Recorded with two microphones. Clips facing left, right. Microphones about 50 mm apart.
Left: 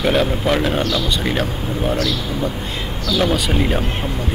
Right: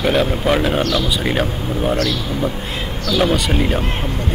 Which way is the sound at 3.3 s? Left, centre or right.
Centre.